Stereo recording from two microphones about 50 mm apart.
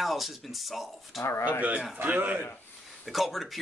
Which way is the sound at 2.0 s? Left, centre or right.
Right.